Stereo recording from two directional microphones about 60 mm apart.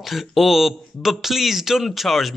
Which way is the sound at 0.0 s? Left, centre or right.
Centre.